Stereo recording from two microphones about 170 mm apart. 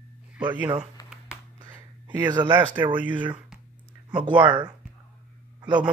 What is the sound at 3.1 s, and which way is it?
Speech, 30° right (ahead or behind).